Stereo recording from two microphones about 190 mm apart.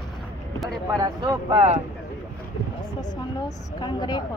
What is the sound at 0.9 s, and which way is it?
Speech, 20° right (ahead or behind).